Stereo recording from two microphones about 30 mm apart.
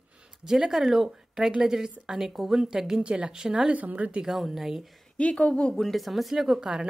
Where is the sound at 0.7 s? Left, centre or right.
Centre.